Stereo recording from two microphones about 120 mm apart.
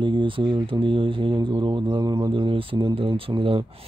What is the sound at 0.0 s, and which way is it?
Speech, 45° right (ahead or behind).